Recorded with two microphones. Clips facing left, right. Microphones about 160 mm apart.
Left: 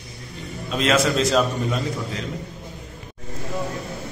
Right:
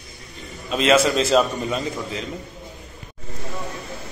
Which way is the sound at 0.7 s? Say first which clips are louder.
Right 3 dB; centre (ahead or behind).